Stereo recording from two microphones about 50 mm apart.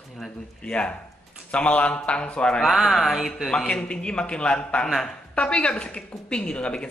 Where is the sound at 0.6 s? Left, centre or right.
Left.